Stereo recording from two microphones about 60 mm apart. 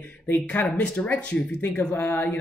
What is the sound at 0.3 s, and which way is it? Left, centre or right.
Speech, left.